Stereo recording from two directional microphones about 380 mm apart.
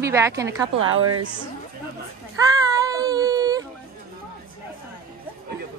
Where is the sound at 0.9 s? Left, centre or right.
Right.